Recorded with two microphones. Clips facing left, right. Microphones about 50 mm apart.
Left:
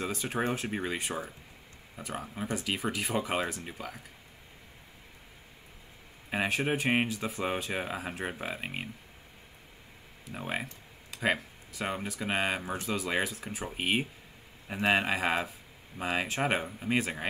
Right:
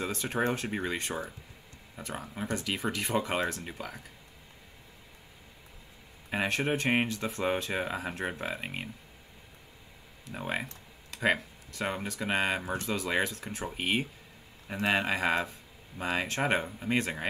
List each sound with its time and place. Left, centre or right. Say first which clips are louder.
0.0 s speech: right 1 dB; centre
6.3 s speech: even; centre
10.2 s computer keyboard: right 1 dB; centre
11.1 s speech: right 2 dB; centre